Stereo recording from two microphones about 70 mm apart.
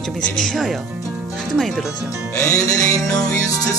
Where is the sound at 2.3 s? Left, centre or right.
Left.